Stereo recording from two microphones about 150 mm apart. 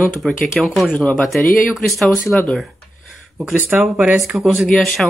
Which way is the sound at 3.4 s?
10° right (ahead or behind).